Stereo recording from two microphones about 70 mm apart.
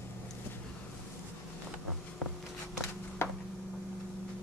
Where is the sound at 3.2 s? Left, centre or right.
Left.